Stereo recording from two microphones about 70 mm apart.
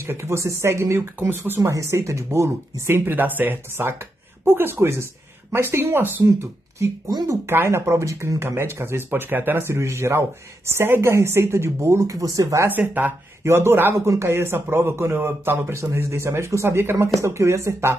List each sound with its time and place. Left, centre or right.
0.0 s a man's voice: right
1.6 s speech: right
3.1 s a man's voice: right
7.4 s a man's voice: right
12.6 s speech: right
13.4 s a man's voice: right
17.2 s speech: right